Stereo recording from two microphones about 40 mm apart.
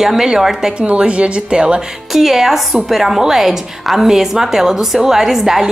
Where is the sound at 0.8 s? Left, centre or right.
Right.